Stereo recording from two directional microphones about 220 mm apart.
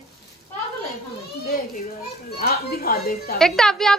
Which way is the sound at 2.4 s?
45° left (ahead or behind).